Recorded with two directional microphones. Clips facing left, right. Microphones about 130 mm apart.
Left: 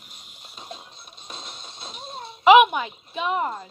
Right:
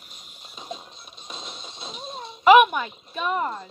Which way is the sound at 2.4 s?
15° left (ahead or behind).